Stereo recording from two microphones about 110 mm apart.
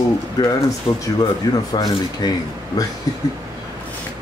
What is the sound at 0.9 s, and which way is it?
Speech, 55° left (ahead or behind).